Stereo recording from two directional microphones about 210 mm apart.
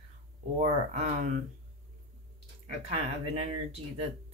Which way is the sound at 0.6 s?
35° right (ahead or behind).